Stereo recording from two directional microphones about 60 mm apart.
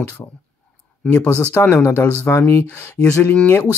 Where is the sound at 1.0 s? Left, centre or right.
Centre.